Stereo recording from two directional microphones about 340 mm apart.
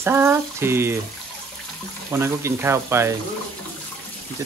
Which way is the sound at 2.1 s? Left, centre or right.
Centre.